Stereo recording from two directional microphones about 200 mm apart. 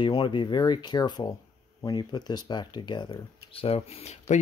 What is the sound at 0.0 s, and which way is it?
Speech, 25° left (ahead or behind).